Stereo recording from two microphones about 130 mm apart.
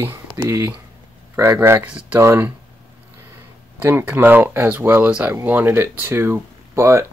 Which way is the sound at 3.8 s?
15° right (ahead or behind).